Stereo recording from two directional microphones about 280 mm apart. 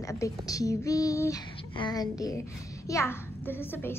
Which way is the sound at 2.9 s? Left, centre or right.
Centre.